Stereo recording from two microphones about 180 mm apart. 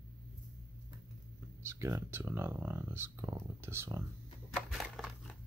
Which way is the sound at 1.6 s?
15° right (ahead or behind).